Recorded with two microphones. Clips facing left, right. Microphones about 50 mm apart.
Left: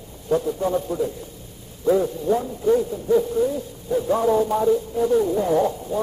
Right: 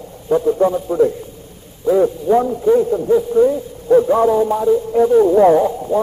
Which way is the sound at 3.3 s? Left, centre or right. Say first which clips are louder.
Right 8 dB; right.